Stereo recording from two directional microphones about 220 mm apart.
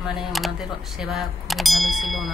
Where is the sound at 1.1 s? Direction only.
Centre (ahead or behind).